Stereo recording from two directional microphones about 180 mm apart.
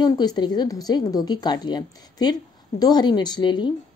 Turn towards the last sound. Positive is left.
turn(degrees=25)  # may be behind; listen again after turning